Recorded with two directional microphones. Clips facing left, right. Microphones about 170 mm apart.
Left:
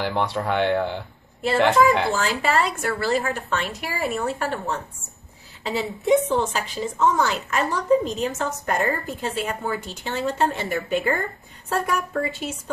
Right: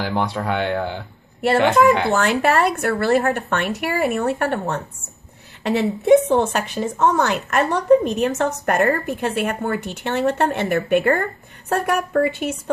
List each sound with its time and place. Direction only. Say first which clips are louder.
0.0 s speech: right 1 dB; centre (ahead or behind)
1.4 s a woman's voice: right 3 dB; 65° right (ahead or behind)